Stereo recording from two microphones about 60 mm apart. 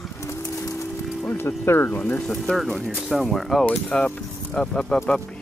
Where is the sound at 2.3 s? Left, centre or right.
Centre.